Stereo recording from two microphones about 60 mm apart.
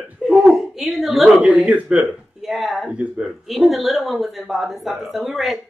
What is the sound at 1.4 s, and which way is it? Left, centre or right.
Speech, right.